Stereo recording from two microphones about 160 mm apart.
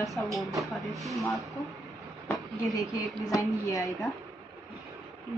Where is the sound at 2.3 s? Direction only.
Centre (ahead or behind).